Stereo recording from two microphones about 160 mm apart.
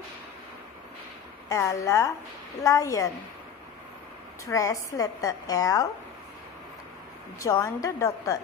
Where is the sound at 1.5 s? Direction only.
20° left (ahead or behind).